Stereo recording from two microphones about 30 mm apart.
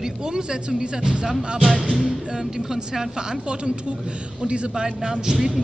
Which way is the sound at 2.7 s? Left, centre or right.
Centre.